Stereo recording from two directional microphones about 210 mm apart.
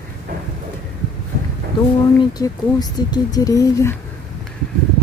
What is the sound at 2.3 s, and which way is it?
Speech, 20° left (ahead or behind).